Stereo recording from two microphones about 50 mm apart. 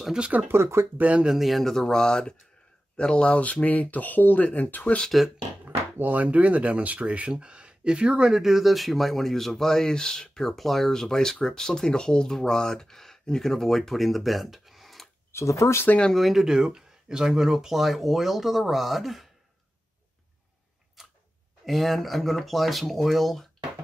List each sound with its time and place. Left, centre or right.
0.5 s speech: right
0.9 s speech: right
1.3 s speech: centre; by 4.8 s left
5.2 s speech: centre
5.9 s speech: right; by 15.0 s centre
15.3 s speech: left
16.1 s speech: centre
16.4 s speech: centre
21.0 s tick-tock: centre
21.6 s speech: centre